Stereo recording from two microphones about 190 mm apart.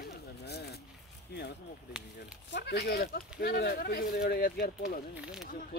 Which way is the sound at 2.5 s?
65° left (ahead or behind).